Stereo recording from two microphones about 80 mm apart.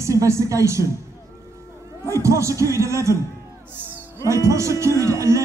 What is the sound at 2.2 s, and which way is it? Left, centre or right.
Music, right.